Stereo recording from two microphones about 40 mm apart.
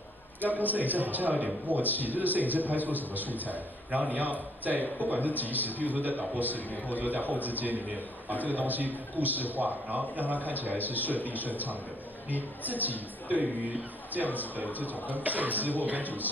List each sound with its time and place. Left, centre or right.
0.5 s a man's voice: right
14.1 s a man's voice: right